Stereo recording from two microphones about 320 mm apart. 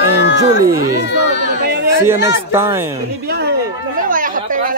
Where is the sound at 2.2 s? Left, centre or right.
Centre.